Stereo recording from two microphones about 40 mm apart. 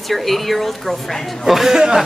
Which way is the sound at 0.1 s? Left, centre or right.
Centre.